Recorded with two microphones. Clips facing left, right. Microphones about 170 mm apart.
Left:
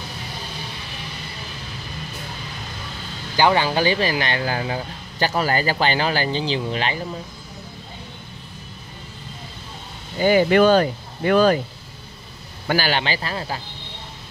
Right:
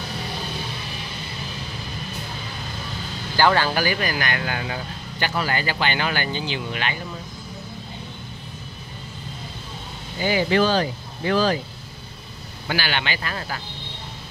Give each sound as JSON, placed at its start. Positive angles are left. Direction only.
{"t": 3.3, "sound": "speech", "side_deg": 20}
{"t": 10.2, "sound": "speech", "side_deg": 50}
{"t": 12.6, "sound": "speech", "side_deg": 40}